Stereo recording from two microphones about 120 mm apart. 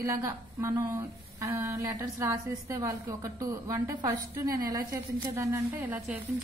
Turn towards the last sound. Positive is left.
turn(degrees=-15)  # may be behind; listen again after turning